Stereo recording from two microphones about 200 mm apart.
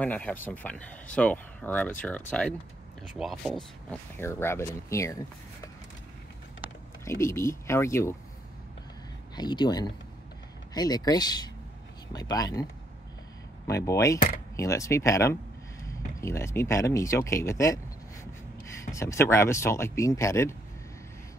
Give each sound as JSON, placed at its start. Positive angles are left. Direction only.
{"t": 0.0, "sound": "speech", "side_deg": 5}
{"t": 7.1, "sound": "speech", "side_deg": 15}
{"t": 9.3, "sound": "speech", "side_deg": 20}
{"t": 13.7, "sound": "speech", "side_deg": 15}
{"t": 18.9, "sound": "speech", "side_deg": 15}